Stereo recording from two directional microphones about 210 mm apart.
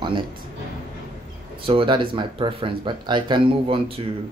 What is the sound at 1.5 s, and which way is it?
Speech, 25° right (ahead or behind).